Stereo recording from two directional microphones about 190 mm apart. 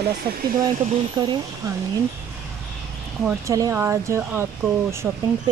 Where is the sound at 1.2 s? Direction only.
20° right (ahead or behind).